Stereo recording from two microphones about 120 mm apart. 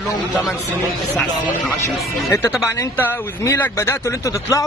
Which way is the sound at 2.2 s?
25° left (ahead or behind).